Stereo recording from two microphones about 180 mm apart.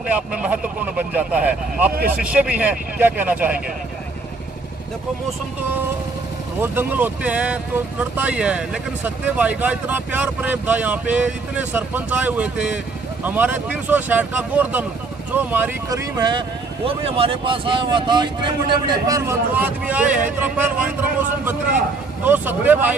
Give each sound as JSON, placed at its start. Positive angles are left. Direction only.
{"t": 0.0, "sound": "speech", "side_deg": -5}
{"t": 6.6, "sound": "speech", "side_deg": -10}
{"t": 15.9, "sound": "speech", "side_deg": -25}
{"t": 22.2, "sound": "speech", "side_deg": -10}